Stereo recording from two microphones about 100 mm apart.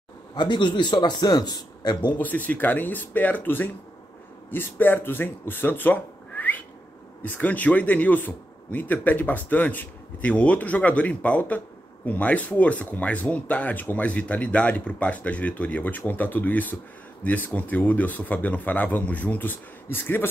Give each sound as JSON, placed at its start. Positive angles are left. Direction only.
{"t": 0.3, "sound": "a man's voice", "side_deg": 50}
{"t": 2.1, "sound": "speech", "side_deg": 15}